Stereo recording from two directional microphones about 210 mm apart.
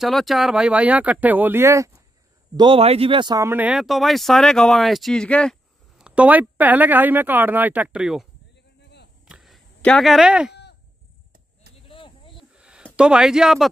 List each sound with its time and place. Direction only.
0.0 s speech: centre (ahead or behind)
9.2 s a sound: centre (ahead or behind)
10.5 s sheep: 50° left (ahead or behind)
11.7 s cricket: 25° left (ahead or behind)
12.5 s a sound: 5° right (ahead or behind)
12.9 s speech: 5° right (ahead or behind)